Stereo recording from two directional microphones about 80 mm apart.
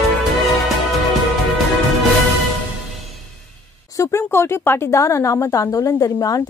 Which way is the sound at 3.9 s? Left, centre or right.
Left.